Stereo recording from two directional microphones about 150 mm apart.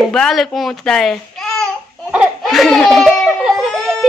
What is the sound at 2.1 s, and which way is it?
Baby cry, 5° right (ahead or behind).